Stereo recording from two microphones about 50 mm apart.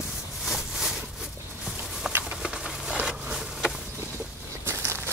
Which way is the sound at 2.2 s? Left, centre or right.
Centre.